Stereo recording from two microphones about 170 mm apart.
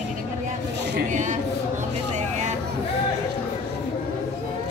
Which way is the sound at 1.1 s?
45° right (ahead or behind).